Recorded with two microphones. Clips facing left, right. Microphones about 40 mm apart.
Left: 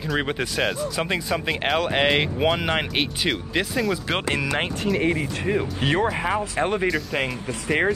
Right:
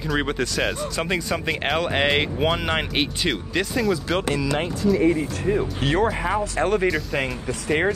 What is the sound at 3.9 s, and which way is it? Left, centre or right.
Speech, left.